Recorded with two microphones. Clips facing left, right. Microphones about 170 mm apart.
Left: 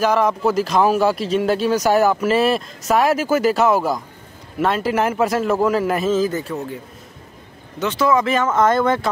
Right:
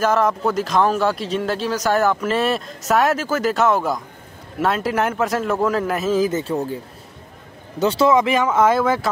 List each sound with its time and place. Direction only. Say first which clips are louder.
0.0 s speech: left 1 dB; centre (ahead or behind)
6.1 s speech: even; 15° right (ahead or behind)
6.4 s speech: right 4 dB; 30° right (ahead or behind)
7.8 s speech: right 3 dB; 35° right (ahead or behind)
8.1 s speech: right 1 dB; 15° right (ahead or behind)